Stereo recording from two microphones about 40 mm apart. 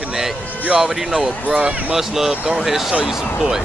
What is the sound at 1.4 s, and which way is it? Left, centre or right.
Speech, right.